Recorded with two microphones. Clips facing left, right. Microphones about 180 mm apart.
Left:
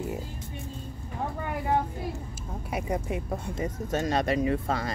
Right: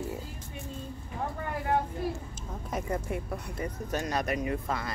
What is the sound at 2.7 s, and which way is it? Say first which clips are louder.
Speech: left 2 dB; 15° left (ahead or behind).